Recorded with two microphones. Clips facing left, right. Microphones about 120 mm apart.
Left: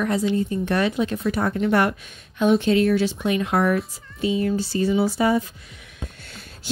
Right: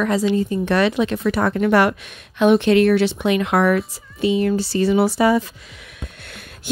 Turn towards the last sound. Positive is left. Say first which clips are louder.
# right 4 dB
turn(degrees=-60)  # may be behind; listen again after turning